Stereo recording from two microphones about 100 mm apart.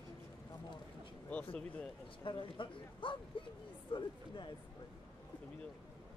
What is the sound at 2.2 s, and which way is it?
Speech, 55° left (ahead or behind).